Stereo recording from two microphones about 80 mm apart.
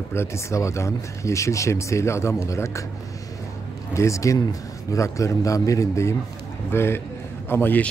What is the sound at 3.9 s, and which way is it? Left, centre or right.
A man's voice, left.